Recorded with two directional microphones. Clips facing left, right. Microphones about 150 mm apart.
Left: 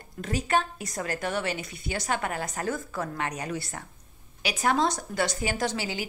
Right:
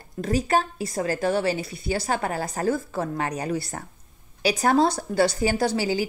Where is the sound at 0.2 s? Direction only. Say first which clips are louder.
Right 4 dB; 35° right (ahead or behind).